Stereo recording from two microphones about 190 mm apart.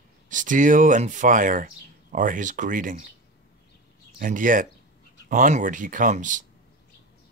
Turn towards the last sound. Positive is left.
turn(degrees=-40)  # may be behind; listen again after turning